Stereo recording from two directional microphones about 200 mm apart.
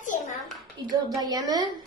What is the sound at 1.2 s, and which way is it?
Speech, 20° right (ahead or behind).